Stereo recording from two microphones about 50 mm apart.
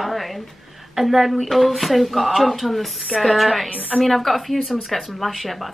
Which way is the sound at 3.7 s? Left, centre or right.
Right.